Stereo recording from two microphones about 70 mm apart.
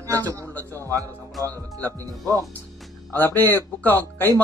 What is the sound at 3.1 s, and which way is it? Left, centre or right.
Speech, left.